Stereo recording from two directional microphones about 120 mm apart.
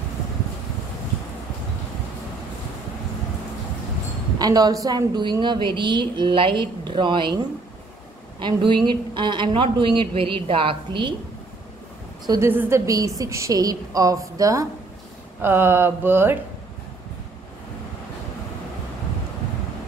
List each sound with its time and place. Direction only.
4.4 s a woman's voice: 35° right (ahead or behind)
12.3 s a woman's voice: 20° right (ahead or behind)